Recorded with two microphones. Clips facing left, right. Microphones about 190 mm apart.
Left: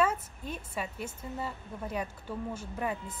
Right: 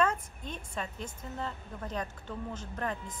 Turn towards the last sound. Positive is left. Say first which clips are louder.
# left 2 dB
turn(degrees=10)  # may be behind; listen again after turning